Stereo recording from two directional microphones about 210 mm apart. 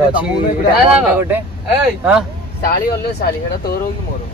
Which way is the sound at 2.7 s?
45° left (ahead or behind).